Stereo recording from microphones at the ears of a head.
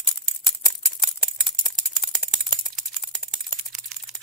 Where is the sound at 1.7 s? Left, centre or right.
Right.